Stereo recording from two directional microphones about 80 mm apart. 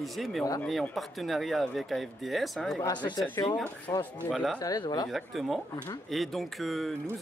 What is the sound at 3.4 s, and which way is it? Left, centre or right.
Speech, left.